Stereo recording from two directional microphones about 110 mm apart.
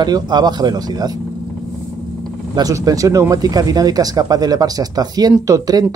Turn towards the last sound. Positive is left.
turn(degrees=-35)  # may be behind; listen again after turning